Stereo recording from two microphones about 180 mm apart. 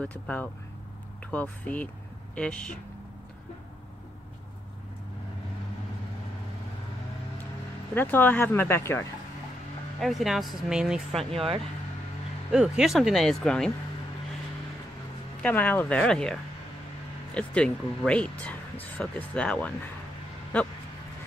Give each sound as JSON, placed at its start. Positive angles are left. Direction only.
{"t": 0.0, "sound": "speech", "side_deg": 10}
{"t": 7.9, "sound": "speech", "side_deg": 10}
{"t": 9.9, "sound": "speech", "side_deg": 0}
{"t": 11.3, "sound": "speech", "side_deg": -30}
{"t": 12.4, "sound": "speech", "side_deg": -5}
{"t": 15.4, "sound": "speech", "side_deg": 10}